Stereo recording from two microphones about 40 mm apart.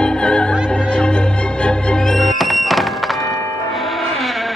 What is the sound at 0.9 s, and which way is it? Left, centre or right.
Music, left.